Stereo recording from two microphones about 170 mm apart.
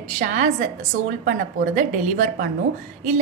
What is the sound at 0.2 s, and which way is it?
Speech, 50° right (ahead or behind).